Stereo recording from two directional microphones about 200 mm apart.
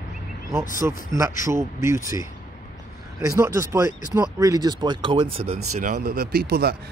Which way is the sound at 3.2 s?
15° right (ahead or behind).